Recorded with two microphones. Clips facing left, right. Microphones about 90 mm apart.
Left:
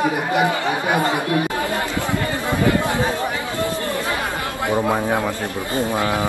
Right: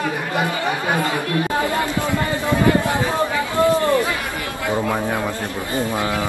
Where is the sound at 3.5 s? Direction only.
20° right (ahead or behind).